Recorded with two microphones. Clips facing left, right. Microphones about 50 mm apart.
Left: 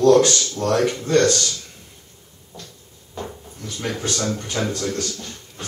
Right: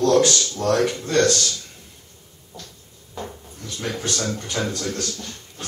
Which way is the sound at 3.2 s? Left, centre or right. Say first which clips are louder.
Left 1 dB; centre.